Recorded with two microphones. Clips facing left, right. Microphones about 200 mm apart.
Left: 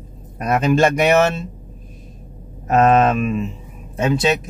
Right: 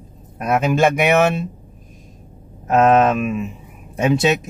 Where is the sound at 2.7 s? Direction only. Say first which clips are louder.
Even; 5° right (ahead or behind).